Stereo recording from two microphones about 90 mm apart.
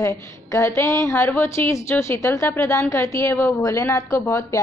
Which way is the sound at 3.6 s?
40° left (ahead or behind).